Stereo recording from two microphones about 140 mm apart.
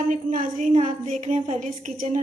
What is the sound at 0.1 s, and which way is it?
A woman's voice, 65° right (ahead or behind).